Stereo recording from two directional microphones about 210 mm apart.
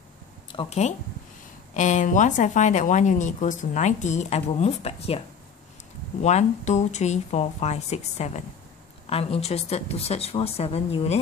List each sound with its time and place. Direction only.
0.5 s speech: 25° left (ahead or behind)
6.2 s a woman's voice: 35° left (ahead or behind)